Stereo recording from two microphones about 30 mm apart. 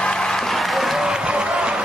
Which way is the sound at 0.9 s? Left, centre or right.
Right.